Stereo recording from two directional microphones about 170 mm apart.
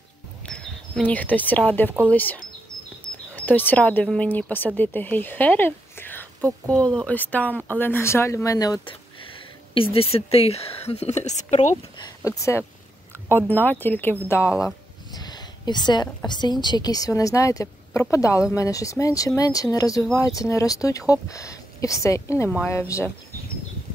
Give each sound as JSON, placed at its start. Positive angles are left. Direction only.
{"t": 0.5, "sound": "speech", "side_deg": 5}
{"t": 12.3, "sound": "speech", "side_deg": 15}
{"t": 15.1, "sound": "a sound", "side_deg": 25}
{"t": 16.3, "sound": "speech", "side_deg": 25}